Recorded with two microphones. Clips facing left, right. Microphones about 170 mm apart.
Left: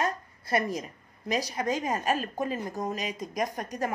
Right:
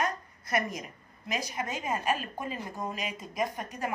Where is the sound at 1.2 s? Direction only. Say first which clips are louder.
Left 5 dB; 35° left (ahead or behind).